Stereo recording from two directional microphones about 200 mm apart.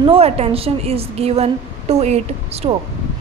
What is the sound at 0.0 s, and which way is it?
A woman's voice, 30° right (ahead or behind).